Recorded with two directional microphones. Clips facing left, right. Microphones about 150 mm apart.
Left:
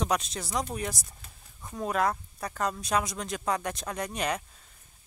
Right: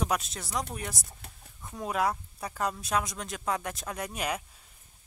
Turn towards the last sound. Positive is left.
turn(degrees=-5)  # may be behind; listen again after turning